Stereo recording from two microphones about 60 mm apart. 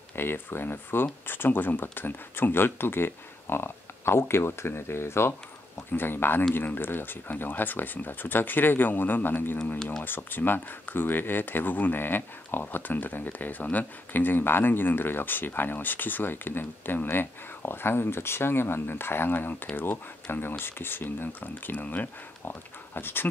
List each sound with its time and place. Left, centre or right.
0.1 s speech: left